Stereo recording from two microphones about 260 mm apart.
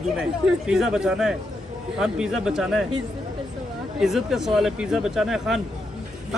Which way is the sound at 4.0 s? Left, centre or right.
Centre.